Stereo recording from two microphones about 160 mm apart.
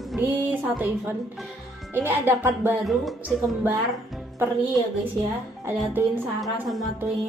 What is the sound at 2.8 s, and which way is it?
Speech, centre (ahead or behind).